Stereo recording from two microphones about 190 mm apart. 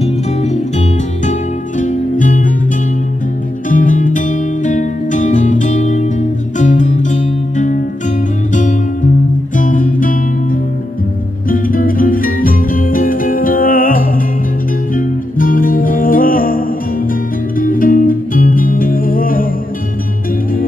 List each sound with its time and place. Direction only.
0.0 s music: 35° left (ahead or behind)
3.6 s music: 45° left (ahead or behind)
11.4 s music: 45° left (ahead or behind)